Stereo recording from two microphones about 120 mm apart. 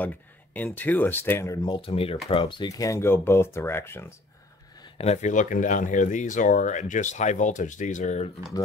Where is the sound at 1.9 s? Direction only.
55° left (ahead or behind).